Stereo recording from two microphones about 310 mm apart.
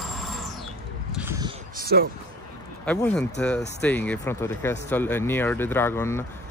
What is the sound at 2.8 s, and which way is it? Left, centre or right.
Speech, centre.